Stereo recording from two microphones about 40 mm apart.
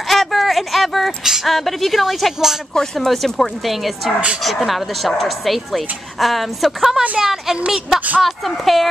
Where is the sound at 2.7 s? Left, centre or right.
Centre.